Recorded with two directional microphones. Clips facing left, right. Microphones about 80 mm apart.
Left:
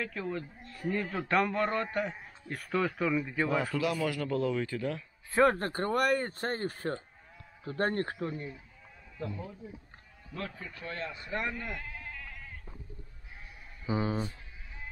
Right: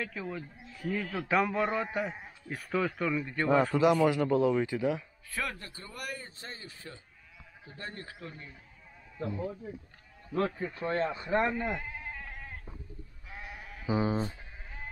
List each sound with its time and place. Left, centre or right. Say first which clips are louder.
0.0 s a man's voice: left 2 dB; centre
3.7 s speech: right 6 dB; right
5.3 s speech: left 12 dB; left
9.2 s speech: right 4 dB; centre
10.3 s speech: right 9 dB; right
13.3 s sheep: right 8 dB; right
13.8 s speech: right 2 dB; centre